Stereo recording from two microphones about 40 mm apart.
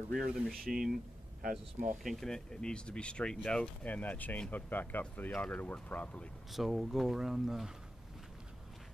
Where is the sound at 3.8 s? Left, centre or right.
Left.